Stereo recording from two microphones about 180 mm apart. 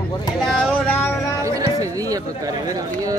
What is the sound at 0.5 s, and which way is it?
Speech, 10° left (ahead or behind).